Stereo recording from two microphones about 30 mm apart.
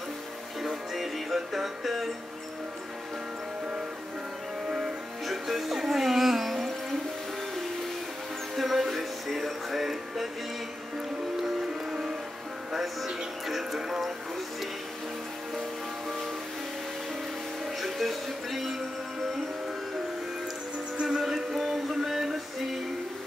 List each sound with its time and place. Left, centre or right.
0.6 s music: centre
4.6 s music: centre
5.2 s music: centre
8.5 s music: centre
12.8 s music: centre
13.7 s music: centre
17.7 s speech: centre
21.1 s music: centre